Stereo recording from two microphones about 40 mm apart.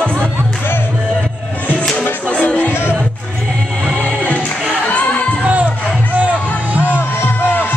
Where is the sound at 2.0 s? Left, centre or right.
Left.